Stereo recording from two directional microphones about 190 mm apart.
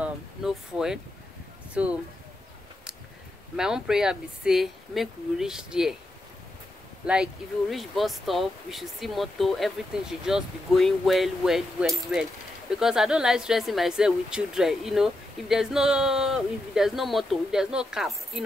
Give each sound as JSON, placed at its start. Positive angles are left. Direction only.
{"t": 0.0, "sound": "a sound", "side_deg": -5}
{"t": 1.7, "sound": "speech", "side_deg": -5}
{"t": 3.5, "sound": "speech", "side_deg": -5}
{"t": 7.0, "sound": "speech", "side_deg": -5}